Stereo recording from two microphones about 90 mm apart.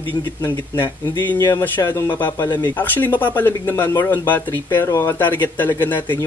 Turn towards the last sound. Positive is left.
turn(degrees=20)  # may be behind; listen again after turning